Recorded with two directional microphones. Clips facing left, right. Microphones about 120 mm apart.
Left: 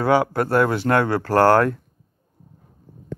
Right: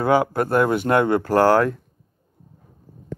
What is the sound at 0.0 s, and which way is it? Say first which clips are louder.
Speech: even; 10° right (ahead or behind).